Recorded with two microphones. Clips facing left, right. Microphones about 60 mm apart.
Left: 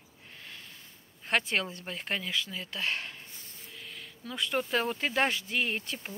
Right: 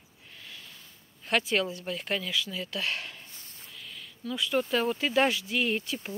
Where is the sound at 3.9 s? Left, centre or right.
Left.